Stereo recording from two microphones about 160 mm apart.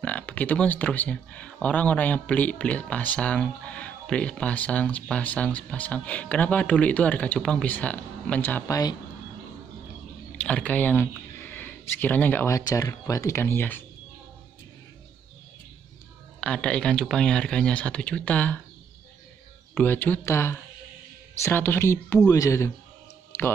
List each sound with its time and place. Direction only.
0.0 s speech: 10° left (ahead or behind)
10.3 s speech: 5° left (ahead or behind)
16.3 s speech: 5° left (ahead or behind)
19.7 s speech: 10° left (ahead or behind)
23.3 s music: 15° left (ahead or behind)